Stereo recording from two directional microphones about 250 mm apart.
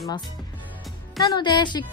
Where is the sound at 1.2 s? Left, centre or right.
Centre.